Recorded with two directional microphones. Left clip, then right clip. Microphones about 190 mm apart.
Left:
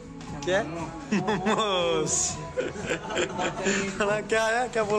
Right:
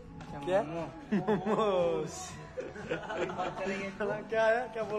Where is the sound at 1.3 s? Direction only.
5° right (ahead or behind).